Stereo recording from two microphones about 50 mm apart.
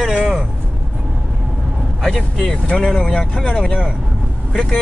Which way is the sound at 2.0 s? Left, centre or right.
Centre.